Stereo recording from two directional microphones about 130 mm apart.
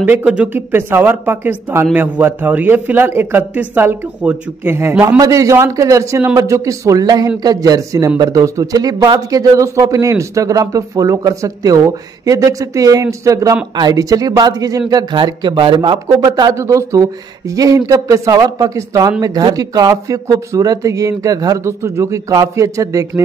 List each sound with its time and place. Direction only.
0.0 s a man's voice: 10° right (ahead or behind)